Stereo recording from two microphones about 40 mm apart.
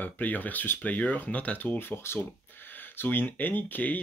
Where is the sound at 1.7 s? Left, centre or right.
Left.